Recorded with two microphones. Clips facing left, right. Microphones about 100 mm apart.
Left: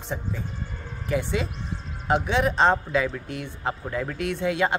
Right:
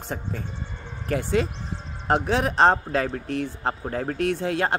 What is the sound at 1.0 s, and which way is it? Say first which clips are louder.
Speech: right 3 dB; 50° right (ahead or behind).